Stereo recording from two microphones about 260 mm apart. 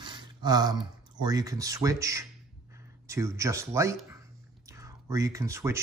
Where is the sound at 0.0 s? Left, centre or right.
Centre.